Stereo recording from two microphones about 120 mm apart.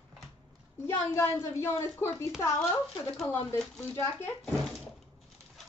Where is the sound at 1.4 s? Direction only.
20° left (ahead or behind).